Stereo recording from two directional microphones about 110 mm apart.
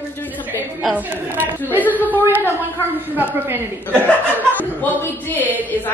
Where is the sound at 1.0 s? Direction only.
15° right (ahead or behind).